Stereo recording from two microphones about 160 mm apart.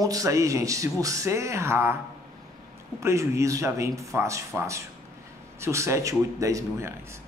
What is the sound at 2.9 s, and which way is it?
A man's voice, 20° right (ahead or behind).